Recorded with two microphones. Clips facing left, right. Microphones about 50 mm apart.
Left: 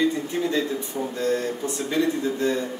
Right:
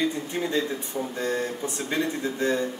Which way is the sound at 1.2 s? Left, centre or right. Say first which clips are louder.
Left 4 dB; right.